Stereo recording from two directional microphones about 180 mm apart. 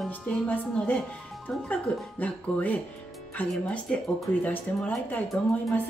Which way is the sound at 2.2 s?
10° left (ahead or behind).